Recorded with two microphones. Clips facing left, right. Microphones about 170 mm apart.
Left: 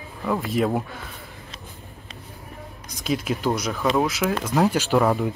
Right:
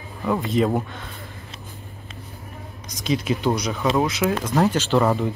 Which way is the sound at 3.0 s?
5° left (ahead or behind).